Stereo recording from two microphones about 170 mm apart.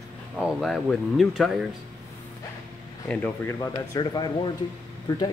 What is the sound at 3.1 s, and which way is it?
Speech, 10° left (ahead or behind).